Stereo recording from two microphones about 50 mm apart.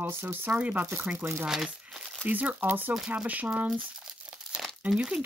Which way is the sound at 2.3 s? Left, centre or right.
Right.